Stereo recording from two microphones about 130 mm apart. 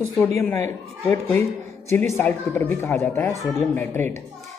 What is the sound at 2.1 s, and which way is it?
A child's voice, 15° left (ahead or behind).